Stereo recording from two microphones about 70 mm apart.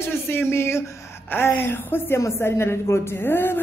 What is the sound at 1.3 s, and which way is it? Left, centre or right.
A woman's voice, left.